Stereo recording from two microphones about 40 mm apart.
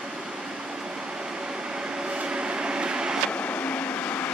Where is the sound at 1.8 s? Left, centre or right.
Right.